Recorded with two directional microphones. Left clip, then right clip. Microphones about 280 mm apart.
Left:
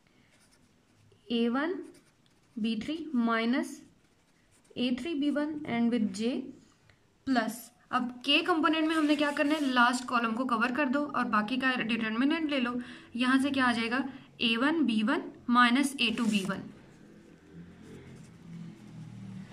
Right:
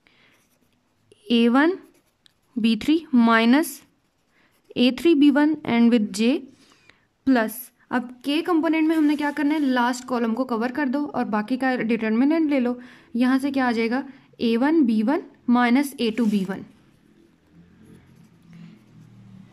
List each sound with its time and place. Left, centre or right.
1.2 s a woman's voice: right